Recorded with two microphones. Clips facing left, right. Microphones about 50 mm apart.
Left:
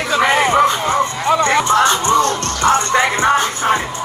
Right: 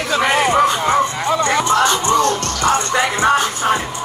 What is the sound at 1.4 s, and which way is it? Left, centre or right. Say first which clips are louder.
Music: left 1 dB; left.